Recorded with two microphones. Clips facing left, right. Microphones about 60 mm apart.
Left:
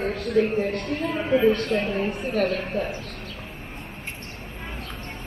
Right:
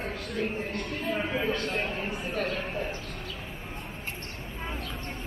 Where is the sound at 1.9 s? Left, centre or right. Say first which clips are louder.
Left 7 dB; left.